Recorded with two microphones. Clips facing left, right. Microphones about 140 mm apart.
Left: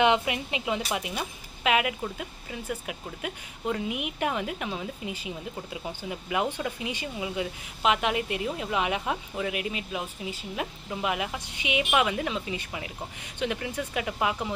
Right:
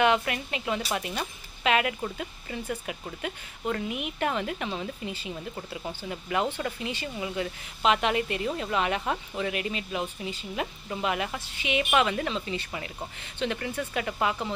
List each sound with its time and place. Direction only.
0.0 s speech: 20° left (ahead or behind)